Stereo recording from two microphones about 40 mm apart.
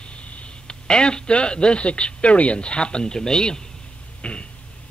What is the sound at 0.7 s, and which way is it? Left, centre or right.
Speech, left.